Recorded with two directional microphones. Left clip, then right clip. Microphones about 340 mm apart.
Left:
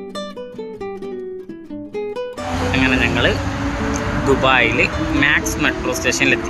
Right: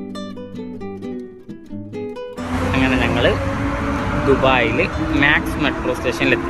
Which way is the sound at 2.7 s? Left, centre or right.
Centre.